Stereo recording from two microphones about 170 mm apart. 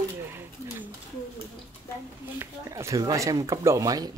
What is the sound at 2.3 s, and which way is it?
Speech, 15° right (ahead or behind).